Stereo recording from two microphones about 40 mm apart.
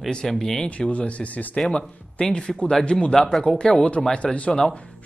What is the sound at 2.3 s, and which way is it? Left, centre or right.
Speech, left.